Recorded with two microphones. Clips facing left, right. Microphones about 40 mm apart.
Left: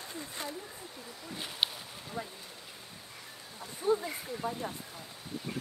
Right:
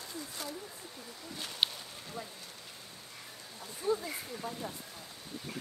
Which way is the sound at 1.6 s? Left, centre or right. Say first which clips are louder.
Even; centre.